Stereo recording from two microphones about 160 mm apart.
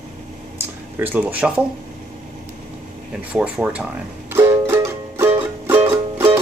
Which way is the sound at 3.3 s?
5° right (ahead or behind).